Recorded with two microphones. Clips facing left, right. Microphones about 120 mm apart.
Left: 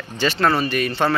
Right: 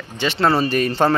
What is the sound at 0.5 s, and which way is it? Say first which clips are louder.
Speech: right 3 dB; 35° right (ahead or behind).